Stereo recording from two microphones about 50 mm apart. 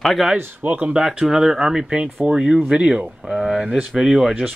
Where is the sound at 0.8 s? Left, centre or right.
Centre.